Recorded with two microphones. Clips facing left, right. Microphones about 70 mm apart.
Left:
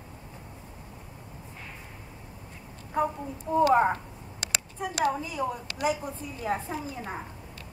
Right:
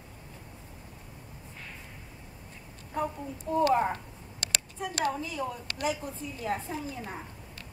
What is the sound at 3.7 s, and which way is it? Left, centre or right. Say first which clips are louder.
Speech: left 4 dB; left.